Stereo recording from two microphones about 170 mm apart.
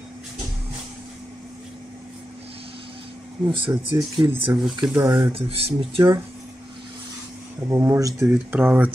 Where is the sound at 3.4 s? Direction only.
30° right (ahead or behind).